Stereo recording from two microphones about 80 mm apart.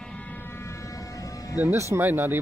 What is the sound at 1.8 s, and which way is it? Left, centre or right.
Speech, right.